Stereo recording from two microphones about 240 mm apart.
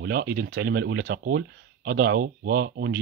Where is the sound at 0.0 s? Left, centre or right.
Right.